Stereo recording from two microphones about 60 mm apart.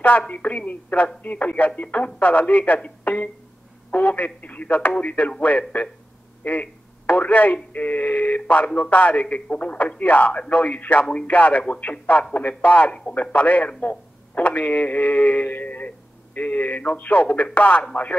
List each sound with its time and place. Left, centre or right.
0.3 s a man's voice: left